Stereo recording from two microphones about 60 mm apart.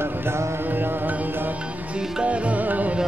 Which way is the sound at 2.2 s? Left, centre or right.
Right.